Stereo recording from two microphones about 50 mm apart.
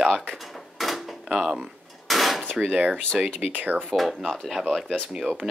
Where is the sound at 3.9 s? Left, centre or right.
Centre.